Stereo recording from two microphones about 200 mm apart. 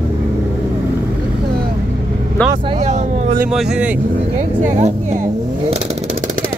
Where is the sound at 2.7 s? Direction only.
35° right (ahead or behind).